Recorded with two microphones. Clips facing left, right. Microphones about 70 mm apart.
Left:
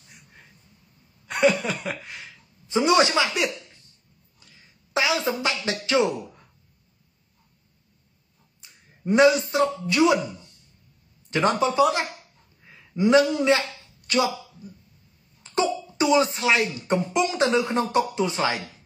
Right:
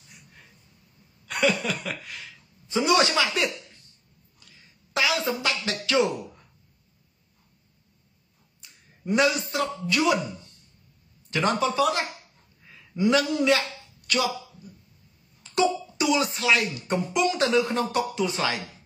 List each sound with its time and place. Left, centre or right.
1.2 s a woman's voice: left
4.4 s a sound: left
4.9 s a woman's voice: left
8.5 s speech: left
11.2 s speech: left
12.6 s a sound: left
16.0 s speech: left